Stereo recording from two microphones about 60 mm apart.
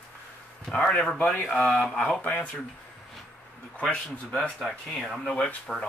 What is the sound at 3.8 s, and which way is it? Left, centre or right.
Speech, left.